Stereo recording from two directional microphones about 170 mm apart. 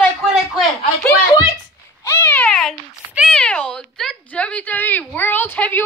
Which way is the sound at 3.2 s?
5° left (ahead or behind).